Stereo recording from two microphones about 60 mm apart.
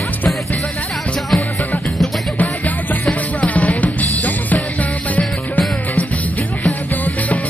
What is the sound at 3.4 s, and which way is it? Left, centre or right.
Drum, left.